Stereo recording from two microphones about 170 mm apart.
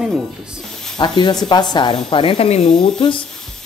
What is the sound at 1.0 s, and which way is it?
Speech, 25° left (ahead or behind).